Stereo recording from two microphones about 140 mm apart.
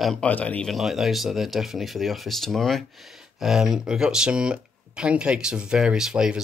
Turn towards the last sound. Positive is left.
turn(degrees=-5)  # may be behind; listen again after turning